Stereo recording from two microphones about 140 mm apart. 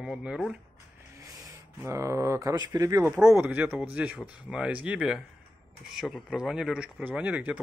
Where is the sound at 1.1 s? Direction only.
25° right (ahead or behind).